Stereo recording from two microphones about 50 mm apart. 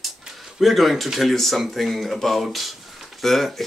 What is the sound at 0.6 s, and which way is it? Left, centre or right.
Speech, centre.